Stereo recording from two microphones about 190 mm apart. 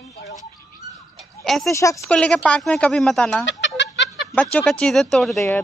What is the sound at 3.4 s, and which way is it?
Chicken, 70° left (ahead or behind).